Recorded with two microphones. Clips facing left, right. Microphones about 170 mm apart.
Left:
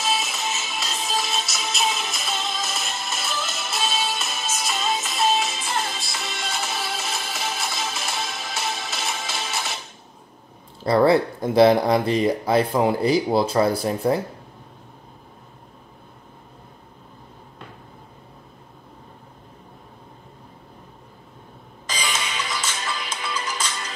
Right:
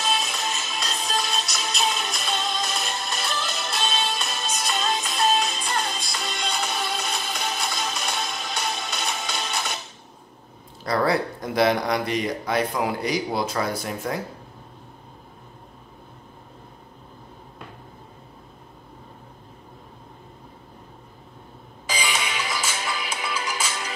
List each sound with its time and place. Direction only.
0.0 s music: 5° left (ahead or behind)
10.8 s speech: 25° left (ahead or behind)
21.8 s music: 10° right (ahead or behind)